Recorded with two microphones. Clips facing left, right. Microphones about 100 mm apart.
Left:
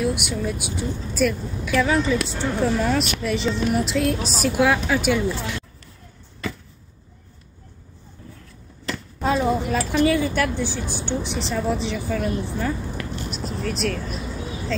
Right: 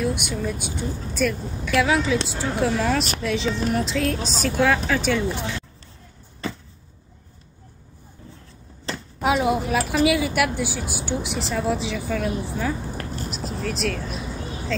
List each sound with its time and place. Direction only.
0.3 s speech: centre (ahead or behind)
5.2 s speech: 20° right (ahead or behind)
8.9 s a sound: 30° right (ahead or behind)
9.4 s speech: 10° right (ahead or behind)
12.9 s a sound: 40° right (ahead or behind)
13.3 s vehicle: centre (ahead or behind)